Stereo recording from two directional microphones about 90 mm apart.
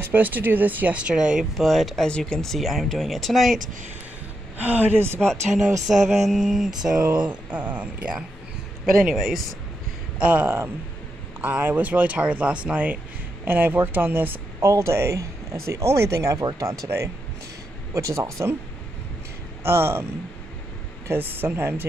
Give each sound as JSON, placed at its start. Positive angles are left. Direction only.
{"t": 0.0, "sound": "speech", "side_deg": -20}
{"t": 4.6, "sound": "speech", "side_deg": -20}
{"t": 5.2, "sound": "speech", "side_deg": 5}
{"t": 9.1, "sound": "speech", "side_deg": 0}
{"t": 10.1, "sound": "speech", "side_deg": -15}
{"t": 19.6, "sound": "speech", "side_deg": -30}
{"t": 21.3, "sound": "speech", "side_deg": -25}